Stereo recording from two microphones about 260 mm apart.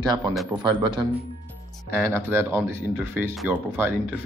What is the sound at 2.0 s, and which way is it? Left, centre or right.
Speech, centre.